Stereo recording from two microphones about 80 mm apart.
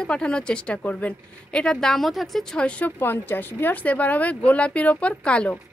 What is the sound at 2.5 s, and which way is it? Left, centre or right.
A woman's voice, centre.